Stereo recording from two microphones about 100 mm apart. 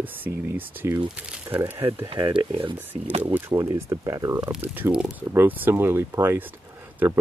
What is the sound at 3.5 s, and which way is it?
Speech, 35° right (ahead or behind).